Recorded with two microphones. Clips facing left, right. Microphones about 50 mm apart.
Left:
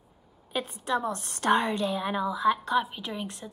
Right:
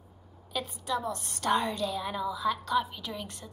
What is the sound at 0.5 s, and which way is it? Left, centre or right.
A woman's voice, left.